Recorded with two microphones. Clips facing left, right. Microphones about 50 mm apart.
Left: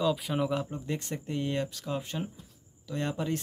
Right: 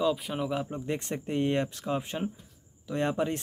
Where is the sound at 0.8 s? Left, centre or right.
Right.